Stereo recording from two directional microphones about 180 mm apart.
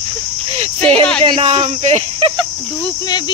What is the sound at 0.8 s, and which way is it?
Speech, 30° right (ahead or behind).